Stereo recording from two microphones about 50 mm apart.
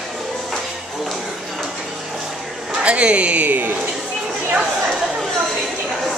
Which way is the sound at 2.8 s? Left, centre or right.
Right.